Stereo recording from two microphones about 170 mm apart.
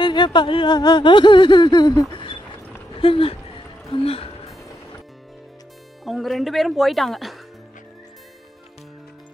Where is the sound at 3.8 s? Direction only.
35° left (ahead or behind).